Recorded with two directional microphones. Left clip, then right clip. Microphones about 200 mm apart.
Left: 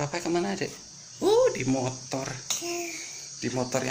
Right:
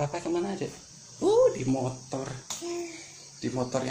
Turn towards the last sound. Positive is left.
turn(degrees=-5)  # may be behind; listen again after turning